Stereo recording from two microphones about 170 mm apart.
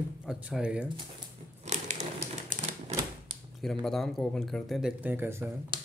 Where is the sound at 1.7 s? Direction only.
45° right (ahead or behind).